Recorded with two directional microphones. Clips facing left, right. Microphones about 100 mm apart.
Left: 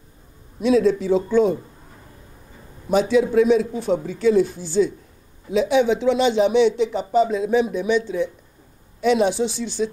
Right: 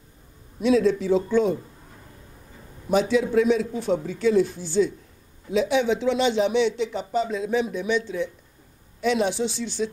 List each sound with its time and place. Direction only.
0.6 s speech: 15° left (ahead or behind)
2.9 s speech: 15° left (ahead or behind)